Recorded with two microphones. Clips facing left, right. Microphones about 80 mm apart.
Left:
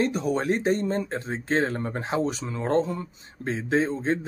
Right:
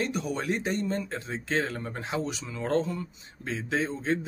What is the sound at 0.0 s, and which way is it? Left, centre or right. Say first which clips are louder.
Speech: left 6 dB; left.